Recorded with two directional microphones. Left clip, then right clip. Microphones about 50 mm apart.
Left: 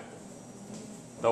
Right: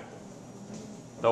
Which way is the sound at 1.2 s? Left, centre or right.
Centre.